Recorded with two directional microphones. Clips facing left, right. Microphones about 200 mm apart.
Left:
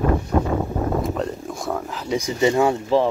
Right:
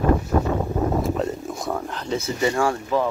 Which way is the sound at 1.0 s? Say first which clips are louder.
Right 1 dB; 5° right (ahead or behind).